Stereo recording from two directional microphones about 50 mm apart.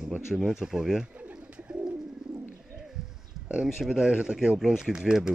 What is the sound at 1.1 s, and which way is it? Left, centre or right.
Bird, centre.